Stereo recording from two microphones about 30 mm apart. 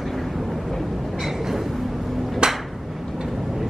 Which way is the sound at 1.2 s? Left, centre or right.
Centre.